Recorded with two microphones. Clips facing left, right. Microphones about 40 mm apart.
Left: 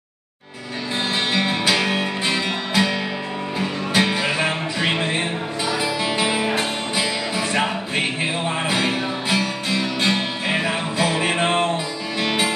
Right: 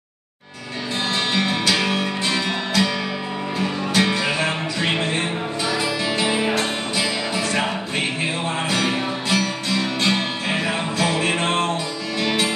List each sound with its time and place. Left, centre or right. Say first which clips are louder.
1.3 s music: left 1 dB; centre